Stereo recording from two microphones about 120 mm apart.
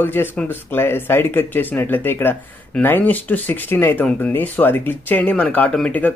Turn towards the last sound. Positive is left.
turn(degrees=10)  # may be behind; listen again after turning